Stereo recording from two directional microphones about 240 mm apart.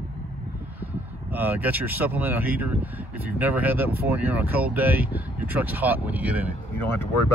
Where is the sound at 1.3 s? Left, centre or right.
Centre.